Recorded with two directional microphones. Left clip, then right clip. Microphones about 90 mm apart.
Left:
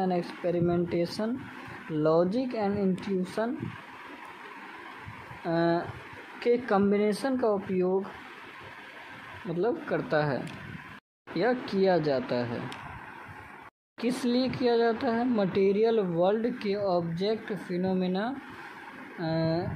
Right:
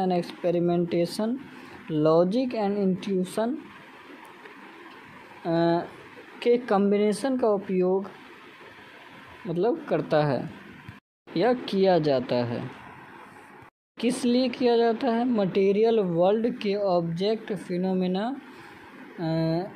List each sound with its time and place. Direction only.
0.0 s speech: 35° right (ahead or behind)
5.4 s speech: 25° right (ahead or behind)
9.5 s speech: 30° right (ahead or behind)
13.9 s speech: 30° right (ahead or behind)